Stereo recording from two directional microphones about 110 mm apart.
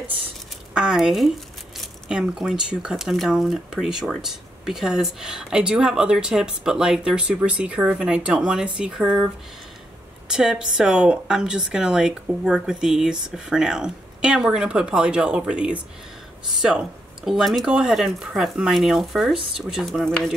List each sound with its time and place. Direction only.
0.7 s a woman's voice: 5° right (ahead or behind)